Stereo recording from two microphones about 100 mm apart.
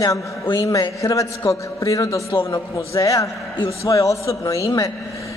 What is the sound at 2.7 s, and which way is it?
A man's voice, 35° left (ahead or behind).